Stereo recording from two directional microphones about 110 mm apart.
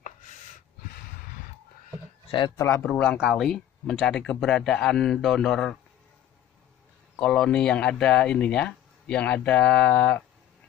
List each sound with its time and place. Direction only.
2.3 s speech: 45° left (ahead or behind)
2.8 s speech: 10° left (ahead or behind)
7.2 s speech: 10° left (ahead or behind)